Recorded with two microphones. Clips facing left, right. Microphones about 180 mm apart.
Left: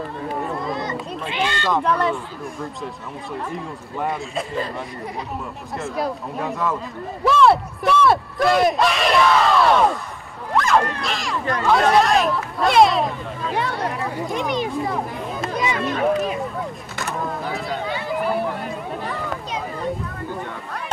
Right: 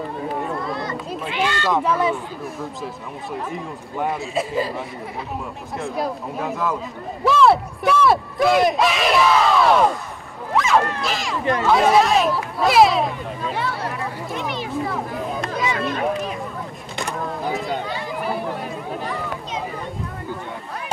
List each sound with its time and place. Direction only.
0.7 s a sound: 20° left (ahead or behind)
1.3 s speech: 20° left (ahead or behind)
1.7 s speech: 5° right (ahead or behind)
14.3 s speech: 15° left (ahead or behind)
15.2 s a sound: centre (ahead or behind)
16.9 s vehicle: 15° right (ahead or behind)